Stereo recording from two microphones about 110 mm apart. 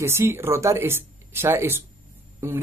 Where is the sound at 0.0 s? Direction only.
25° right (ahead or behind).